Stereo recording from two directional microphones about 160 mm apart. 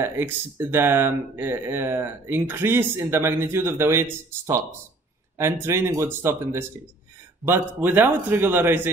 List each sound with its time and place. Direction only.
0.0 s speech: 15° right (ahead or behind)
5.4 s speech: 15° right (ahead or behind)